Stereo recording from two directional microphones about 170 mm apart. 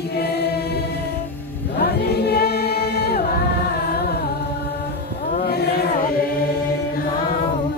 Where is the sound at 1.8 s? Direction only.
65° left (ahead or behind).